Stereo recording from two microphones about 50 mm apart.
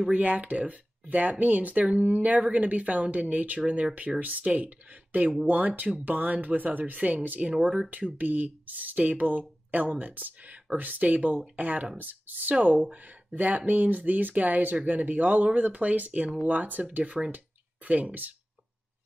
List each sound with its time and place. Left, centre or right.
0.1 s speech: right